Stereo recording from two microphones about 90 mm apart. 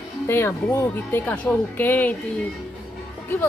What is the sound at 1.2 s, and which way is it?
Speech, 15° left (ahead or behind).